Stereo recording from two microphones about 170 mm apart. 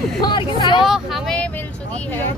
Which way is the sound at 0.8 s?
Centre (ahead or behind).